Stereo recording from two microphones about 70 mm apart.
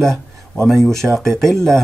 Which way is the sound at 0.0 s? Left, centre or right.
Centre.